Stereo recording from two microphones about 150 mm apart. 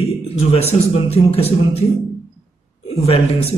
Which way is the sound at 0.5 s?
40° left (ahead or behind).